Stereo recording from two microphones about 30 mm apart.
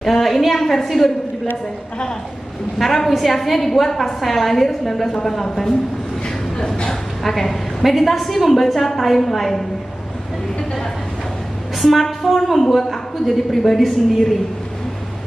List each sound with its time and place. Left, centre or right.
0.0 s a woman's voice: centre
2.8 s a woman's voice: centre
6.2 s a sound: left
6.9 s a sound: centre
7.8 s a woman's voice: centre
11.8 s a woman's voice: centre